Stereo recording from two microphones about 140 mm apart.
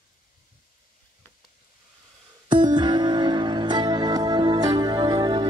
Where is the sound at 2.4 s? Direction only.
30° right (ahead or behind).